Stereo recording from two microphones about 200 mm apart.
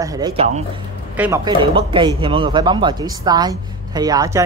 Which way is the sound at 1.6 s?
25° right (ahead or behind).